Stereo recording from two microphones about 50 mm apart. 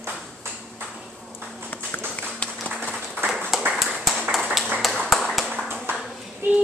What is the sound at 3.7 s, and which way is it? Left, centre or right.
Clapping, centre.